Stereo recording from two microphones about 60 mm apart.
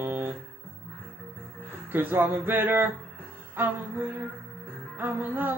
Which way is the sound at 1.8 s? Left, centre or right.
Right.